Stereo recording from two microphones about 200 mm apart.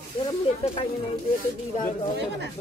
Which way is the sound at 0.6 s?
25° left (ahead or behind).